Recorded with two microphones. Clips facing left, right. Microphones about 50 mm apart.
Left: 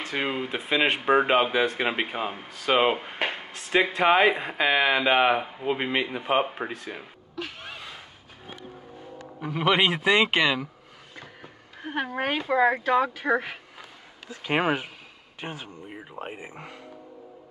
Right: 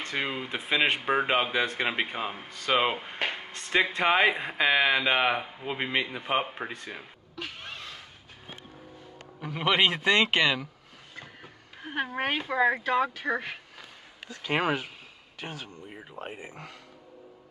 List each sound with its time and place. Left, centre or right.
0.0 s speech: centre
9.4 s speech: centre
11.1 s a sound: centre
12.1 s speech: centre; by 15.7 s left
15.9 s speech: centre